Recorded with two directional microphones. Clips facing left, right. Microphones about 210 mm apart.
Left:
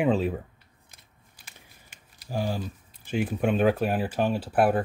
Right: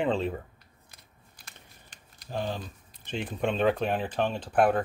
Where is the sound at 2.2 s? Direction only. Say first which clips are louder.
Left 3 dB; 10° left (ahead or behind).